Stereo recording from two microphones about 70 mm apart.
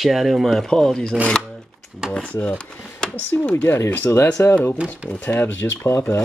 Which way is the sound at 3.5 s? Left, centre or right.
Left.